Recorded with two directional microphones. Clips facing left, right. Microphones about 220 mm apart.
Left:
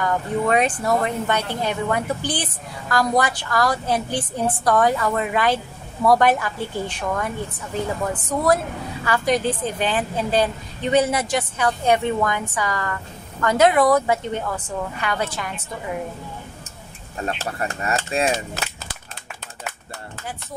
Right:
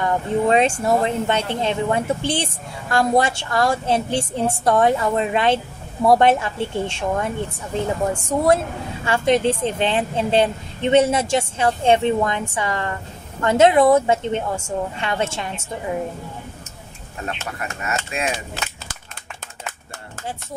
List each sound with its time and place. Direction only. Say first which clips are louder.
0.0 s a woman's voice: right 2 dB; 25° right (ahead or behind)
17.4 s speech: left 3 dB; 35° left (ahead or behind)